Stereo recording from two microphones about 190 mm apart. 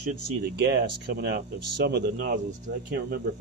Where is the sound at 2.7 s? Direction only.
70° right (ahead or behind).